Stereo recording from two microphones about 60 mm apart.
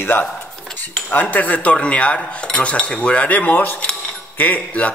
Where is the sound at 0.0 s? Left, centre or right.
Left.